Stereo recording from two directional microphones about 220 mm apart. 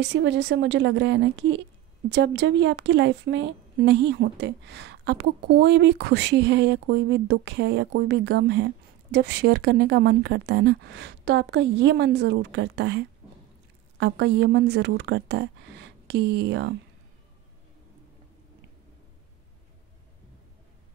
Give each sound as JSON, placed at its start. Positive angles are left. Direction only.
{"t": 0.0, "sound": "a woman's voice", "side_deg": -55}